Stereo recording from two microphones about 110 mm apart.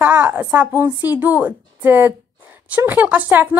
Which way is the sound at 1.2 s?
15° right (ahead or behind).